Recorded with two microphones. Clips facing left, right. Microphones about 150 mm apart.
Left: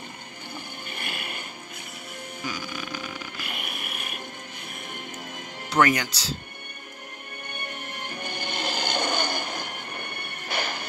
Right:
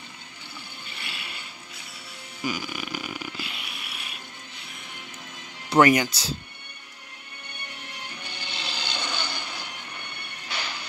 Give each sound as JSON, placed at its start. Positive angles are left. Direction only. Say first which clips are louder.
{"t": 0.8, "sound": "a sound", "louder": "left 5 dB", "side_deg": 50}
{"t": 2.4, "sound": "music", "louder": "right 4 dB", "side_deg": -10}
{"t": 3.3, "sound": "music", "louder": "left 2 dB", "side_deg": 50}
{"t": 5.7, "sound": "speech", "louder": "right 4 dB", "side_deg": -10}
{"t": 7.5, "sound": "music", "louder": "left 5 dB", "side_deg": 50}